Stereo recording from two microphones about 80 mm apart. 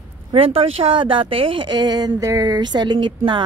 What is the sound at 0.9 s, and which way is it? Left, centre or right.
Speech, right.